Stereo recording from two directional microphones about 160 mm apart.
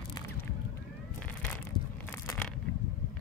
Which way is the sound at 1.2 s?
10° left (ahead or behind).